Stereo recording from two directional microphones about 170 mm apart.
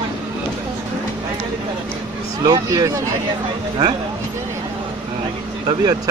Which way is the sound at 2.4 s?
20° right (ahead or behind).